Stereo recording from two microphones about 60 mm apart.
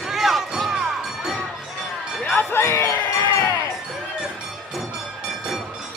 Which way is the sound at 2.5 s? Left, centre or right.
Left.